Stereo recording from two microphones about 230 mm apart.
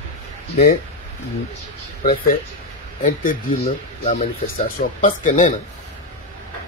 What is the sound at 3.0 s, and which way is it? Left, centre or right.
Speech, left.